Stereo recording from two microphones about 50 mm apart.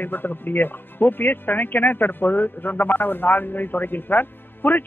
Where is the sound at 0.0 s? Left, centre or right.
Left.